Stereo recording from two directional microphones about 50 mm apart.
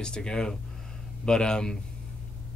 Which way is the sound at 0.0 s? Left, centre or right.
Centre.